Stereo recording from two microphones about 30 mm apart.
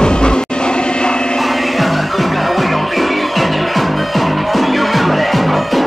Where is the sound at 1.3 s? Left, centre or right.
Centre.